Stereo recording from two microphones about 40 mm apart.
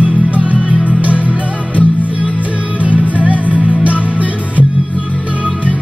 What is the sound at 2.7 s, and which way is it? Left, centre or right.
Music, right.